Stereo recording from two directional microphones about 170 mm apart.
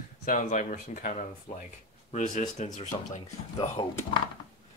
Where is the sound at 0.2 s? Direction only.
50° left (ahead or behind).